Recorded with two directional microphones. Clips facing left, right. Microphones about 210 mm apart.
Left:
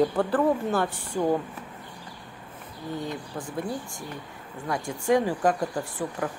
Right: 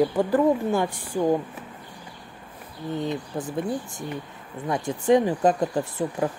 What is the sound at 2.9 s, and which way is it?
Speech, 20° right (ahead or behind).